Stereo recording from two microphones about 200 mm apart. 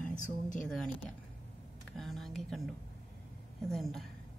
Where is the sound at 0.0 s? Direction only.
40° left (ahead or behind).